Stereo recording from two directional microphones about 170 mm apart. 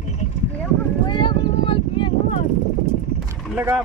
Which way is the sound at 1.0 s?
30° left (ahead or behind).